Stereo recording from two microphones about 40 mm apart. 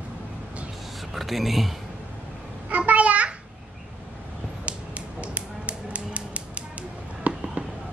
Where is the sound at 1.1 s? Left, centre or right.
Centre.